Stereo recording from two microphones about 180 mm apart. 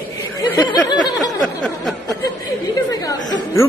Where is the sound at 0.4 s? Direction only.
25° left (ahead or behind).